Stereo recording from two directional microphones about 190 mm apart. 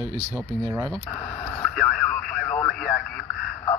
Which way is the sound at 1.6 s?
Centre (ahead or behind).